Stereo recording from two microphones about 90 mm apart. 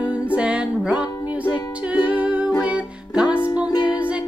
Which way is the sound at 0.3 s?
15° right (ahead or behind).